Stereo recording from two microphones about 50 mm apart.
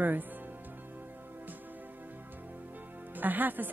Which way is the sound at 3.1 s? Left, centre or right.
Right.